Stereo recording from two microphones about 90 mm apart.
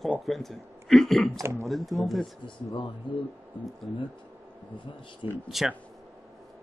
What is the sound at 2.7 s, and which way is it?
Speech, 65° left (ahead or behind).